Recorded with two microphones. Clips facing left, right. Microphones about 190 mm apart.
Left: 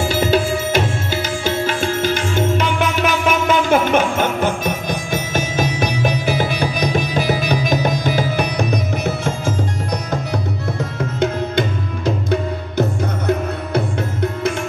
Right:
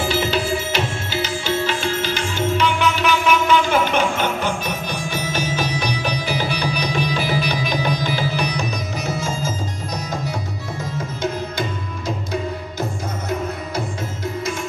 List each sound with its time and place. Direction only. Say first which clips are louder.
0.0 s music: left 4 dB; 50° left (ahead or behind)